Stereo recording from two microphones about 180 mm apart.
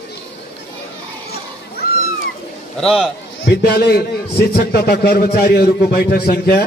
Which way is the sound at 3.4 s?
65° left (ahead or behind).